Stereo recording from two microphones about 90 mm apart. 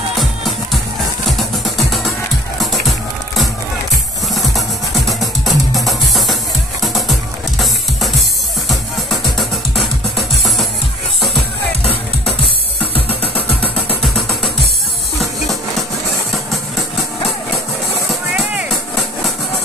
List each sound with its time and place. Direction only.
1.3 s music: centre (ahead or behind)
12.9 s music: 20° left (ahead or behind)
14.0 s music: centre (ahead or behind)
18.0 s music: 5° right (ahead or behind)